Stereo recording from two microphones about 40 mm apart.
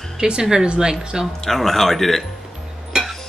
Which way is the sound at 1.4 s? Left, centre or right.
Centre.